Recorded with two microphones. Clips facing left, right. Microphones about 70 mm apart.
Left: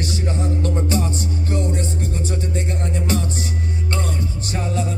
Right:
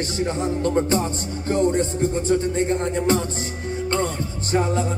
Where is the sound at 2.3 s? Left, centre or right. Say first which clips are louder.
Right 6 dB; right.